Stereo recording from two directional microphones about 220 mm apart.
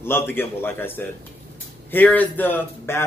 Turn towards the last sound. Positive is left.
turn(degrees=10)  # may be behind; listen again after turning